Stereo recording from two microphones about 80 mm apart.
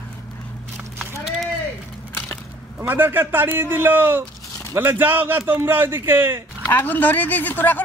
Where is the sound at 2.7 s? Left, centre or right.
Right.